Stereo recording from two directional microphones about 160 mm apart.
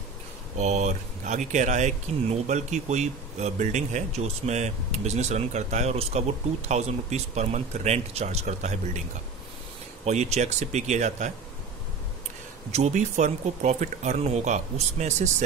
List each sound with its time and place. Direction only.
0.6 s speech: 45° right (ahead or behind)
10.0 s speech: 45° right (ahead or behind)
12.7 s speech: 45° right (ahead or behind)